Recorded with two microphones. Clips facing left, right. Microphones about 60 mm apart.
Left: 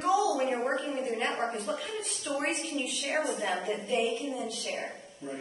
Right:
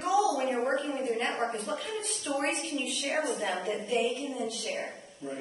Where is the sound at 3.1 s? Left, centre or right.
Left.